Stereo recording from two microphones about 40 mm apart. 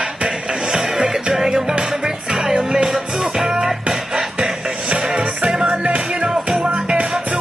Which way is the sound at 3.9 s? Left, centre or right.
Centre.